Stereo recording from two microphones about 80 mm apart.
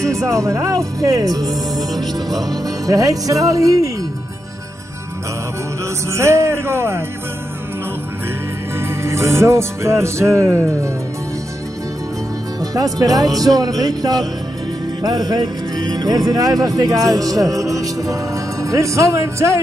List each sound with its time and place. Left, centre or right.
0.0 s speech: right
6.0 s speech: right
8.7 s music: right
12.5 s speech: right